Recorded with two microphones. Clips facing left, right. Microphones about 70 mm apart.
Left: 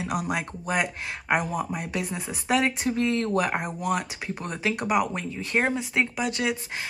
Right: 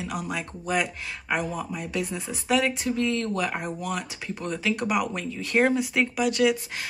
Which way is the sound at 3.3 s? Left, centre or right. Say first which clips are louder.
Left 3 dB; left.